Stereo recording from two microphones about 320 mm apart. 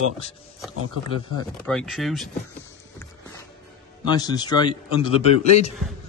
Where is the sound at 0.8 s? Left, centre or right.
Right.